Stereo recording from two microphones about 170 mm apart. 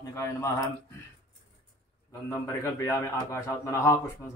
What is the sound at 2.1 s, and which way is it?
A man's voice, 15° left (ahead or behind).